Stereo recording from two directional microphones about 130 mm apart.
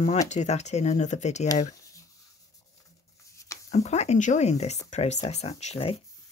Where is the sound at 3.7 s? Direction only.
60° left (ahead or behind).